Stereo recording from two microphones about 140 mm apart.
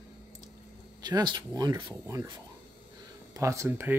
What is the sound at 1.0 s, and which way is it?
Speech, 30° right (ahead or behind).